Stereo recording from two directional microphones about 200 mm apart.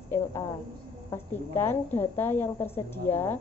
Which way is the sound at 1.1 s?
10° left (ahead or behind).